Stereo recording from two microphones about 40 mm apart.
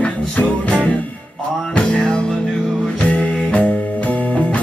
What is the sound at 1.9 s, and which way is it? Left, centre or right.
Music, left.